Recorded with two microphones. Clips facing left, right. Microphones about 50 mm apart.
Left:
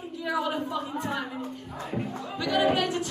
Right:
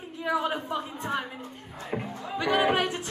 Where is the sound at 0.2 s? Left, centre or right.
Right.